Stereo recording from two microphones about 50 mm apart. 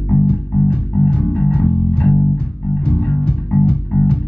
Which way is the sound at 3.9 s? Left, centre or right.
Centre.